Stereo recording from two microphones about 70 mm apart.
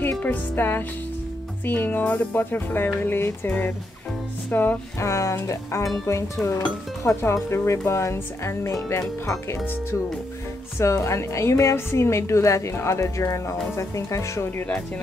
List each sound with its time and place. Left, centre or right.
0.2 s speech: left
4.5 s music: left
4.9 s a woman's voice: left
10.8 s a woman's voice: left